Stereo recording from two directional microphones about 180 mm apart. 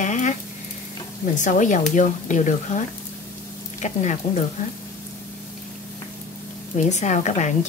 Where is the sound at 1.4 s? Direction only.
45° left (ahead or behind).